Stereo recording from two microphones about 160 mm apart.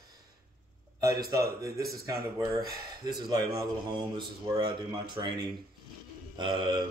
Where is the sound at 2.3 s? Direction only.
20° right (ahead or behind).